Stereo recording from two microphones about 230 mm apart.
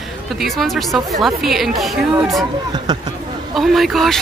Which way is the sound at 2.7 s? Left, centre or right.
Centre.